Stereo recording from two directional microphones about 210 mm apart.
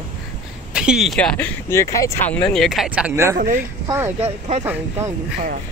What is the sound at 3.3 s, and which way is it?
Speech, 40° right (ahead or behind).